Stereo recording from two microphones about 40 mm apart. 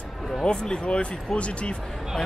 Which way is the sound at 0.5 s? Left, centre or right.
Left.